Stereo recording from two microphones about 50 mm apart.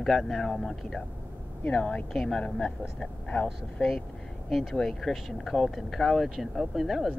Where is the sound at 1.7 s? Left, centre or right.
Left.